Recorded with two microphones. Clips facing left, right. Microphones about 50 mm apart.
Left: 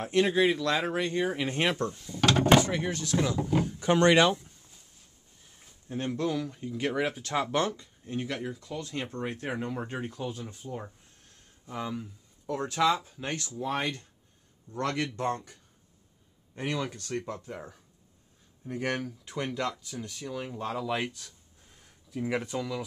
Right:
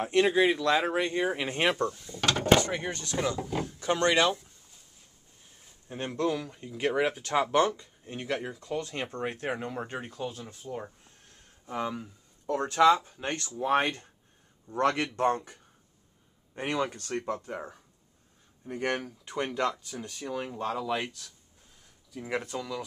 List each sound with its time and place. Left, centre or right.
0.0 s speech: centre
2.0 s drawer open or close: centre
2.4 s a sound: centre
2.7 s speech: centre
5.9 s speech: centre
8.8 s speech: centre
11.6 s speech: centre
13.5 s speech: right
16.5 s speech: right
18.7 s speech: centre